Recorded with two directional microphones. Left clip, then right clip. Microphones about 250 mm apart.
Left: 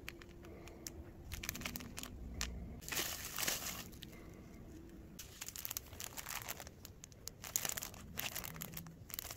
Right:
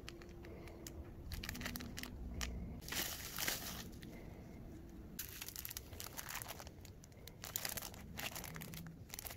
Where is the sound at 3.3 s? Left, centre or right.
Centre.